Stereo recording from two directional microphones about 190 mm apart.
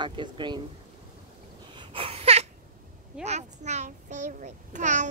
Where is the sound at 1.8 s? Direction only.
25° right (ahead or behind).